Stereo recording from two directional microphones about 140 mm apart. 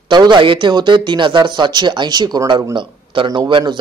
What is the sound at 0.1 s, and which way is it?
A man's voice, 30° right (ahead or behind).